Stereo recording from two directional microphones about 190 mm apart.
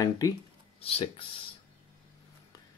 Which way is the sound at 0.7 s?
30° left (ahead or behind).